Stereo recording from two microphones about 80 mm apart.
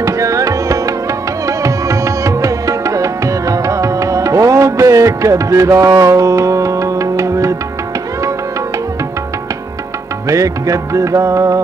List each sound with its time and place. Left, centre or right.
0.0 s music: right
10.2 s music: right